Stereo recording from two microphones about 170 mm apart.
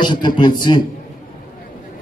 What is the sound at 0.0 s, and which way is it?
Speech, 25° left (ahead or behind).